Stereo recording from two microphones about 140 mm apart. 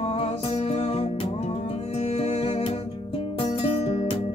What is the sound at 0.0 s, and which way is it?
Music, 45° left (ahead or behind).